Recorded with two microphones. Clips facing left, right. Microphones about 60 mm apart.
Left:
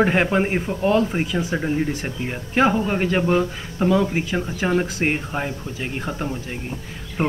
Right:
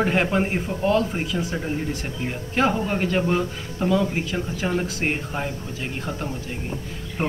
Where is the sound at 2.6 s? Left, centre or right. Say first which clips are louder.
Left 3 dB; centre.